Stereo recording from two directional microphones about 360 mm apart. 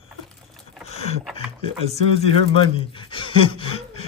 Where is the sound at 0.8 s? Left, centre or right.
Centre.